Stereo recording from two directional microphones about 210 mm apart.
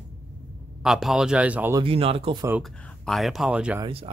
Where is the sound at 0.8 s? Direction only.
Centre (ahead or behind).